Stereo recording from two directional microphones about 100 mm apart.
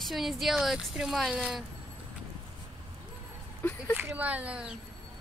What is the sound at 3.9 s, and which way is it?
Speech, 15° right (ahead or behind).